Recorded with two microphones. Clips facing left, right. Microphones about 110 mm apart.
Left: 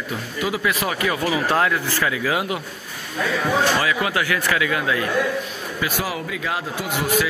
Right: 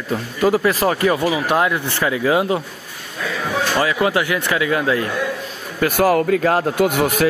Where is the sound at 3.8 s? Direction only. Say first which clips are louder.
Right 4 dB; 30° right (ahead or behind).